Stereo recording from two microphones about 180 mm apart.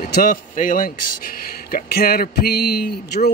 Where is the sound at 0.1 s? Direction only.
50° left (ahead or behind).